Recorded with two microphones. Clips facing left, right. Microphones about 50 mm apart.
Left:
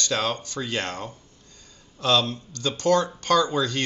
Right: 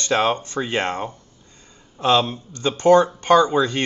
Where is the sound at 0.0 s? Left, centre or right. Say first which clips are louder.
Right 6 dB; right.